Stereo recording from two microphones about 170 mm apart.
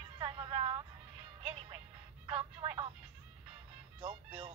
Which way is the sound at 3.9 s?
35° right (ahead or behind).